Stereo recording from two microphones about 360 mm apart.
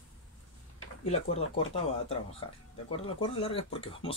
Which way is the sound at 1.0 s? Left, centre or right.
Centre.